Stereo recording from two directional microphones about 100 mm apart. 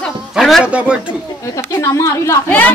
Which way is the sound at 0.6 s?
10° right (ahead or behind).